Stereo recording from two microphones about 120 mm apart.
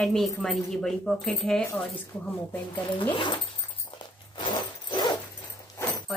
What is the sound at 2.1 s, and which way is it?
Speech, 15° left (ahead or behind).